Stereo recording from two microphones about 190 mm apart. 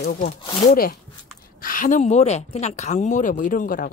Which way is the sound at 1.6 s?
45° left (ahead or behind).